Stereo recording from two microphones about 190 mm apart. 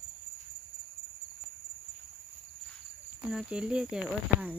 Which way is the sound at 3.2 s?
5° right (ahead or behind).